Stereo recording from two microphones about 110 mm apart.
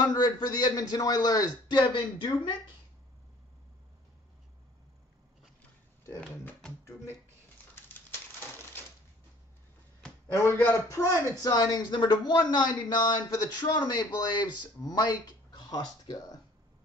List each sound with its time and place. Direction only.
0.0 s a man's voice: 35° left (ahead or behind)
10.3 s a man's voice: 25° left (ahead or behind)